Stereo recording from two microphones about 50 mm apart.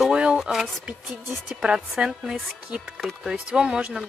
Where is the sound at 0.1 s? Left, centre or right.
Right.